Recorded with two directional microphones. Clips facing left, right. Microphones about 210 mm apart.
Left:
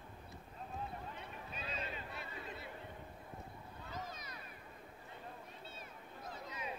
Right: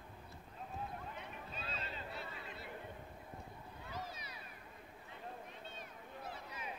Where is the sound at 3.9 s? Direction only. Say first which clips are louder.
Even; 10° right (ahead or behind).